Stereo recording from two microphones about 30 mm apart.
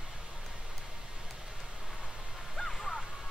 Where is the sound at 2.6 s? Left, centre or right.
Centre.